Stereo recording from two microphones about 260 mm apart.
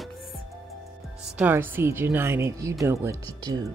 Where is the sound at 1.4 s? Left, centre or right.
Centre.